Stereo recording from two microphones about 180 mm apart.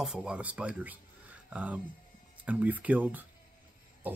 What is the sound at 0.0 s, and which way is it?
Speech, 5° right (ahead or behind).